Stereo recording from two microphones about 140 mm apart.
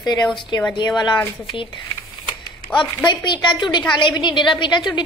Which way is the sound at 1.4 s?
35° left (ahead or behind).